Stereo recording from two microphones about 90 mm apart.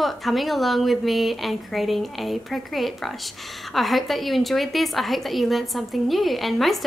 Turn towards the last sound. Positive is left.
turn(degrees=0)  # may be behind; listen again after turning